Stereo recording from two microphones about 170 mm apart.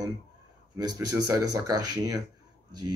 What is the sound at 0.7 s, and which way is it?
Speech, 20° right (ahead or behind).